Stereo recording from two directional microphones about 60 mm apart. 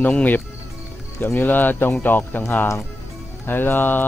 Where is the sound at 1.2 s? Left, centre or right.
Left.